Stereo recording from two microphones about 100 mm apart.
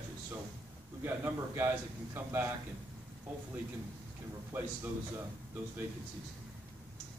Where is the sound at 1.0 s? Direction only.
25° right (ahead or behind).